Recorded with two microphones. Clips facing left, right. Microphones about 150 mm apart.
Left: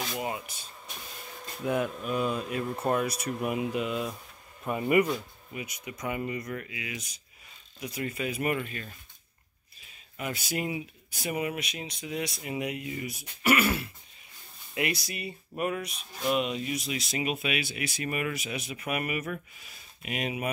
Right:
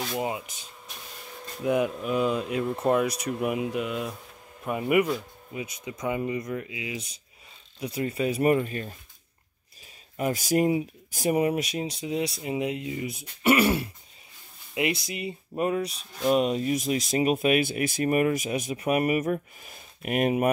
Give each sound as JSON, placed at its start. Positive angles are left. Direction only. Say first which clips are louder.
{"t": 0.1, "sound": "speech", "louder": "right 4 dB", "side_deg": -20}
{"t": 5.5, "sound": "speech", "louder": "right 4 dB", "side_deg": -25}
{"t": 10.1, "sound": "speech", "louder": "right 9 dB", "side_deg": -40}